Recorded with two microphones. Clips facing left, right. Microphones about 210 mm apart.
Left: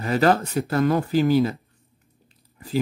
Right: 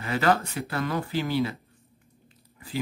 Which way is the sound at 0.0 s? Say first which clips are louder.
Left 5 dB; 40° left (ahead or behind).